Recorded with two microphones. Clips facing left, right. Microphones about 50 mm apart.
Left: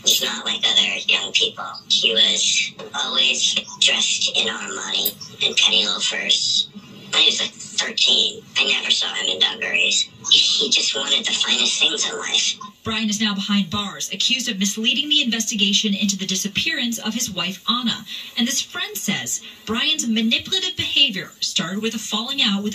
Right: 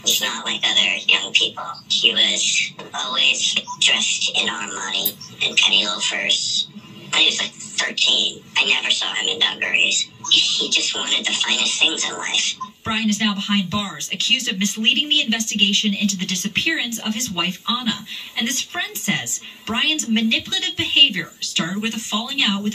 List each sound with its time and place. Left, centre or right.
0.0 s speech: right